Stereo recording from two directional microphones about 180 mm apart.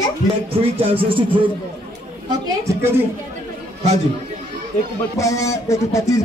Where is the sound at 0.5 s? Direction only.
30° right (ahead or behind).